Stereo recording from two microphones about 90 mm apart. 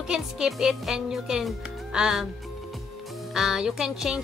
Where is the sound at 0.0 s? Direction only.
5° right (ahead or behind).